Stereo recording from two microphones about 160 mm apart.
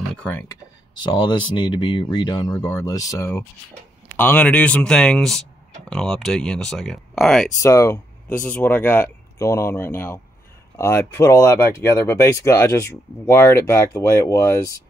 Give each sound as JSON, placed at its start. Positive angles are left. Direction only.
{"t": 0.1, "sound": "speech", "side_deg": 10}
{"t": 0.9, "sound": "speech", "side_deg": 30}
{"t": 7.6, "sound": "speech", "side_deg": 20}